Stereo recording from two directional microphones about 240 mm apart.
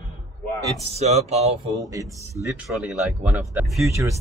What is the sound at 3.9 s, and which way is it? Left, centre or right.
Speech, centre.